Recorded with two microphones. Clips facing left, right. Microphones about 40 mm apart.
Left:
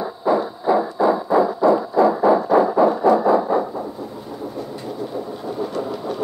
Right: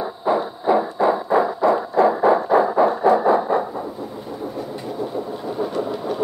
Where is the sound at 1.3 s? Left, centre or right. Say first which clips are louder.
Left 1 dB; right.